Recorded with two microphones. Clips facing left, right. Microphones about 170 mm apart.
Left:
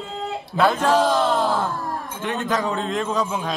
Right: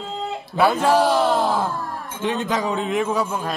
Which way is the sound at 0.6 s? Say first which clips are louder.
Right 1 dB; 10° right (ahead or behind).